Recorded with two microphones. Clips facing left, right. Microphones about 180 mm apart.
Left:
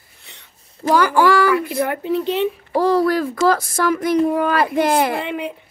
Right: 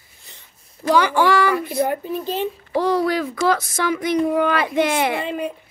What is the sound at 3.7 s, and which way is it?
Speech, 50° left (ahead or behind).